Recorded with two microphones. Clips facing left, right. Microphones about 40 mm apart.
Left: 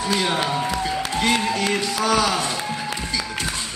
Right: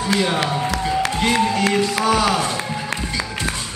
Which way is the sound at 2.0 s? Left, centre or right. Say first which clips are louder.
Left 1 dB; right.